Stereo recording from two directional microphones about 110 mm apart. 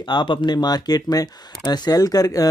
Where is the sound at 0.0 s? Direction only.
45° left (ahead or behind).